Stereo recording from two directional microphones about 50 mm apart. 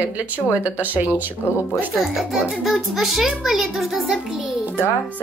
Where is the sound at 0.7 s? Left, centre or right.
Right.